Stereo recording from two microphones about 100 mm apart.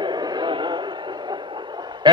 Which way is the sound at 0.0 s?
45° right (ahead or behind).